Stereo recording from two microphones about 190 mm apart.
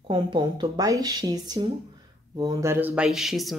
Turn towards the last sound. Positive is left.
turn(degrees=0)  # may be behind; listen again after turning